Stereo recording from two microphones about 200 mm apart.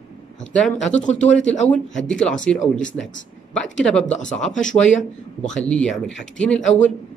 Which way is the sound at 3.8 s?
5° left (ahead or behind).